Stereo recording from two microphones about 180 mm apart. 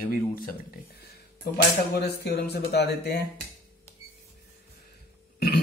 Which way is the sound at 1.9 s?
65° left (ahead or behind).